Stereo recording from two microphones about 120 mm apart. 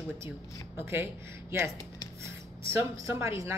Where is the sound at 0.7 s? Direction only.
20° right (ahead or behind).